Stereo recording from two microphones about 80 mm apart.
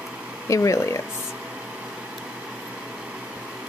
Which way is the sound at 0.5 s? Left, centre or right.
Left.